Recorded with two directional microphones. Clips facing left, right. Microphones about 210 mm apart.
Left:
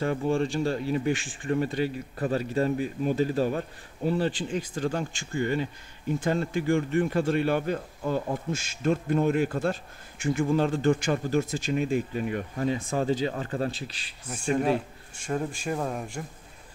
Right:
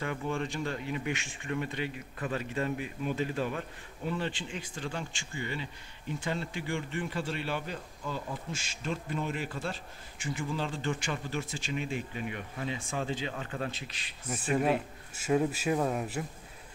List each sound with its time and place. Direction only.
0.0 s speech: 35° left (ahead or behind)
14.3 s a man's voice: 5° right (ahead or behind)